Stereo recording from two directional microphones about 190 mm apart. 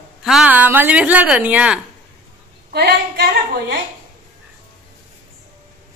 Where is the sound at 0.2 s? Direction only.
5° right (ahead or behind).